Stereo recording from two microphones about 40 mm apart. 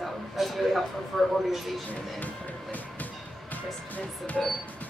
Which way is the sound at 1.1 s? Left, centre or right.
Centre.